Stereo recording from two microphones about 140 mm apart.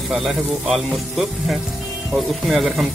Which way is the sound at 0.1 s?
5° right (ahead or behind).